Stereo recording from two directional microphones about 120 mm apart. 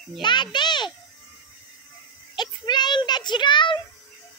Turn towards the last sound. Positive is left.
turn(degrees=40)  # may be behind; listen again after turning